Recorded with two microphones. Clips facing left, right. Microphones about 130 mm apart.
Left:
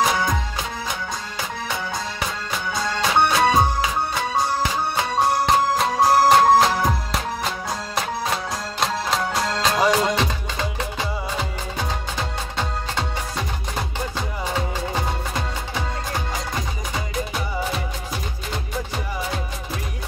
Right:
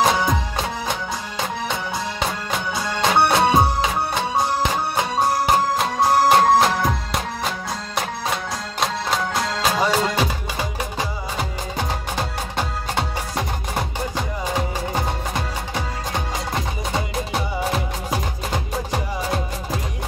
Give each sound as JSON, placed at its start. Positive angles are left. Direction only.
{"t": 0.0, "sound": "music", "side_deg": -25}
{"t": 2.9, "sound": "music", "side_deg": -15}
{"t": 6.0, "sound": "music", "side_deg": 0}
{"t": 8.7, "sound": "music", "side_deg": 0}